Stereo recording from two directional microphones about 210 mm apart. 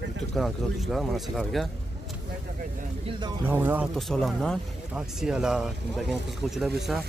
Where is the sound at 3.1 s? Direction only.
20° right (ahead or behind).